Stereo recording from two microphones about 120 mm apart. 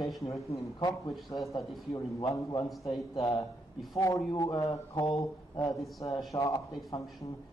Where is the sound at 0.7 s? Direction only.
35° left (ahead or behind).